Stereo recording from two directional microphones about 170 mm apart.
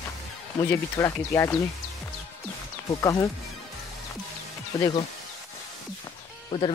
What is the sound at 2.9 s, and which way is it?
Speech, 20° left (ahead or behind).